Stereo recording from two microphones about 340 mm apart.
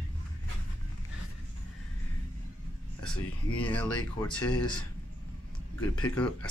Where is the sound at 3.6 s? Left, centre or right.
Centre.